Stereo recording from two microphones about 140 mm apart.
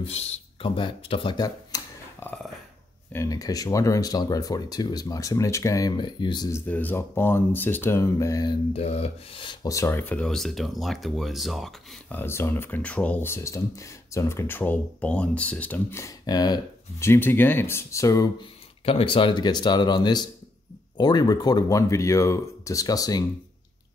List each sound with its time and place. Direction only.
0.0 s speech: 50° left (ahead or behind); by 1.8 s 30° left (ahead or behind)
2.1 s a sound: 15° left (ahead or behind)
3.1 s speech: 20° left (ahead or behind)
6.5 s speech: 10° left (ahead or behind)
8.7 s speech: 50° left (ahead or behind); by 11.7 s centre (ahead or behind)
12.1 s speech: 15° left (ahead or behind)
17.1 s speech: 15° left (ahead or behind)
18.4 s speech: 40° left (ahead or behind)